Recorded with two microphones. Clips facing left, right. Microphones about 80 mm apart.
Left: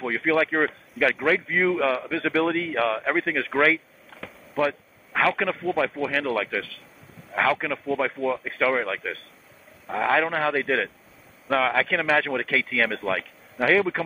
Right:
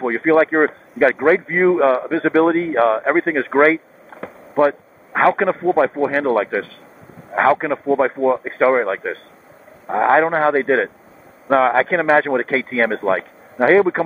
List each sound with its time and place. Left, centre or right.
0.0 s a man's voice: right